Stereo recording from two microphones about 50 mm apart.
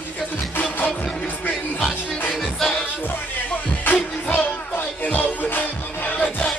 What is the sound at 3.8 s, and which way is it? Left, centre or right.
Music, left.